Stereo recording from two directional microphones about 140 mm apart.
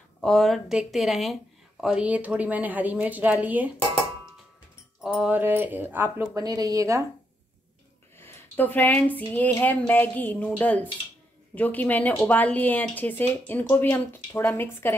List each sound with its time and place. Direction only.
0.2 s speech: 5° left (ahead or behind)
5.0 s speech: 5° right (ahead or behind)
6.3 s speech: 25° right (ahead or behind)
8.2 s speech: 15° left (ahead or behind)